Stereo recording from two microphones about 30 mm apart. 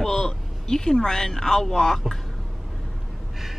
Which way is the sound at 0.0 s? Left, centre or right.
Left.